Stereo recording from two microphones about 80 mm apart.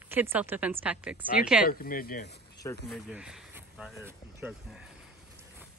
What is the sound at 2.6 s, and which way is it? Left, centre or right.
Speech, left.